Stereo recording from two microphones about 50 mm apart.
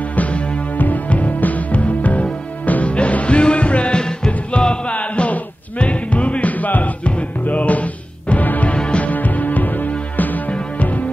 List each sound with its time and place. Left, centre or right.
0.1 s music: left
8.7 s music: left